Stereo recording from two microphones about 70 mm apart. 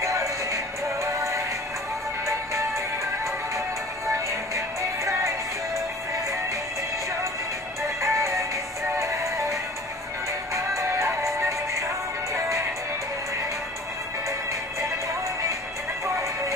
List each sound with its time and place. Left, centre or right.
0.0 s music: right
2.2 s music: right
4.6 s music: right
8.0 s music: right